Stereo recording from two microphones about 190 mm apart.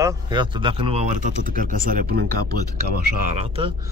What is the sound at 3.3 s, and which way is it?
Speech, 35° right (ahead or behind).